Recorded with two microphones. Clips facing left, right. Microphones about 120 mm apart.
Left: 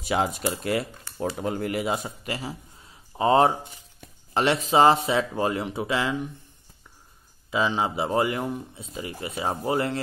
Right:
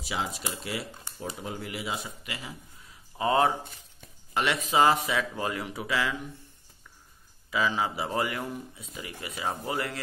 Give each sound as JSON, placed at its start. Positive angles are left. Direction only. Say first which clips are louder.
{"t": 0.0, "sound": "speech", "louder": "left 8 dB", "side_deg": 55}
{"t": 7.5, "sound": "speech", "louder": "left 3 dB", "side_deg": 25}